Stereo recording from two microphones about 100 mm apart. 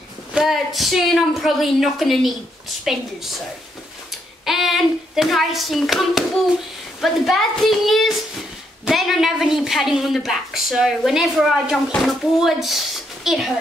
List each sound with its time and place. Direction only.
0.3 s a woman's voice: centre (ahead or behind)
4.5 s a woman's voice: centre (ahead or behind)